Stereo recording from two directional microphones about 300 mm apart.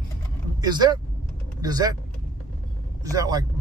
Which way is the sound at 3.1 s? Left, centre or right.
Centre.